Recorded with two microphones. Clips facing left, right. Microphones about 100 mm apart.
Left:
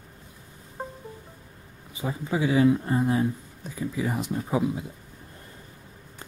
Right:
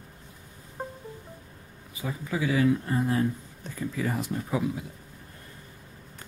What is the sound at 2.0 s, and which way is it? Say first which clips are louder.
Speech: left 3 dB; 25° left (ahead or behind).